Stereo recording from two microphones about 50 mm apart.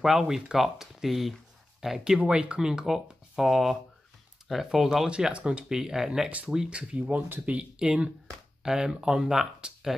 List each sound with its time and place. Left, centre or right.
0.0 s speech: centre
2.2 s speech: right
2.6 s speech: centre
5.1 s speech: centre
5.7 s speech: centre
6.8 s speech: right
7.4 s speech: right
8.6 s speech: centre